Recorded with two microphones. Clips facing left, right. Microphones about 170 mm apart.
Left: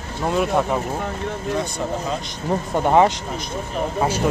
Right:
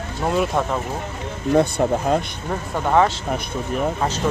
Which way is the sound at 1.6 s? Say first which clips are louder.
Right 7 dB; 55° right (ahead or behind).